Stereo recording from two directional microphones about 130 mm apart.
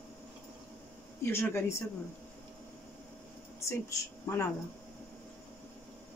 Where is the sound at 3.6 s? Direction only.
20° left (ahead or behind).